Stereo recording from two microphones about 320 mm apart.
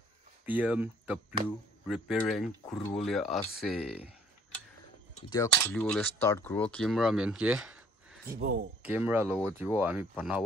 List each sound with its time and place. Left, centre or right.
0.5 s speech: centre
5.3 s speech: centre
8.4 s speech: right
8.8 s speech: centre